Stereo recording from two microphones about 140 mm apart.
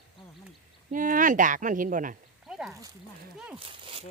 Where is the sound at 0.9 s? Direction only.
70° right (ahead or behind).